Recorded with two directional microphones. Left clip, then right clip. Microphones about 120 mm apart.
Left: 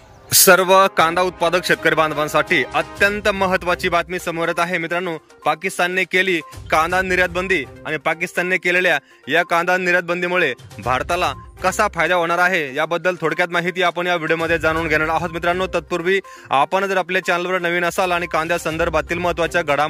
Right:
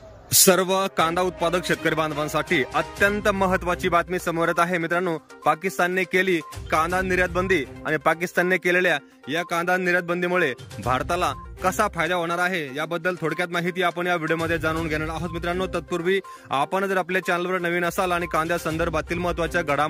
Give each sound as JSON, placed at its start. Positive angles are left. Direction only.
{"t": 0.3, "sound": "speech", "side_deg": -10}
{"t": 9.3, "sound": "speech", "side_deg": -15}